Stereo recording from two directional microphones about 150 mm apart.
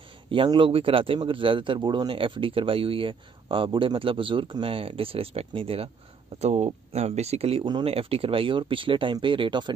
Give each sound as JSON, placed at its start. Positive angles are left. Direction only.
{"t": 0.3, "sound": "a man's voice", "side_deg": -35}